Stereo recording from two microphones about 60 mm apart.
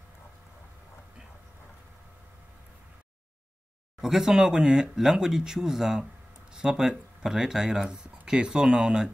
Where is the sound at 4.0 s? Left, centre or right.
Centre.